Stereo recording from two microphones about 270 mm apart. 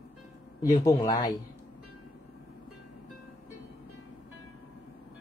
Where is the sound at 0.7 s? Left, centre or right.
Centre.